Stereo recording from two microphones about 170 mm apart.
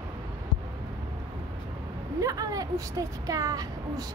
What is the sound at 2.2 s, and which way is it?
A woman's voice, 20° right (ahead or behind).